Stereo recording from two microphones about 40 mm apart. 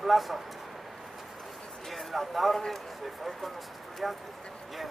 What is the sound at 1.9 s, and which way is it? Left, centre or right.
Speech, centre.